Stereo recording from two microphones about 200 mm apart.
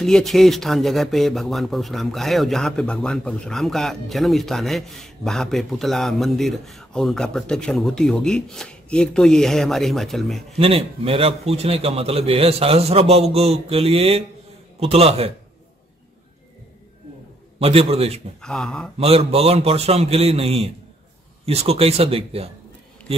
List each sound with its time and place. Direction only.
0.0 s speech: centre (ahead or behind)
10.6 s a man's voice: 30° right (ahead or behind)
17.6 s a man's voice: 30° right (ahead or behind)
18.4 s speech: 5° left (ahead or behind)
18.9 s a man's voice: 30° right (ahead or behind)